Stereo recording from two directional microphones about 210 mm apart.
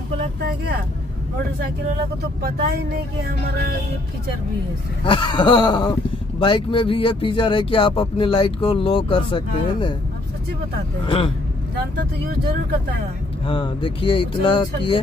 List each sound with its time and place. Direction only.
5.0 s speech: 25° left (ahead or behind)
11.1 s speech: 25° left (ahead or behind)
13.5 s speech: 25° left (ahead or behind)